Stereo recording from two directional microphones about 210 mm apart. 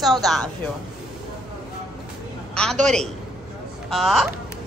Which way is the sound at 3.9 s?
Centre (ahead or behind).